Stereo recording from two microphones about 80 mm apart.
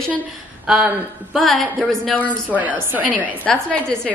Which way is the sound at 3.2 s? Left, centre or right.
Centre.